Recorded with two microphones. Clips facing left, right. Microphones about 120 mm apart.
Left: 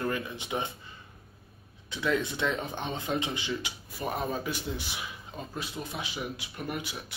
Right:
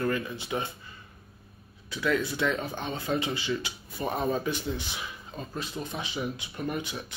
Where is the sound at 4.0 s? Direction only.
5° left (ahead or behind).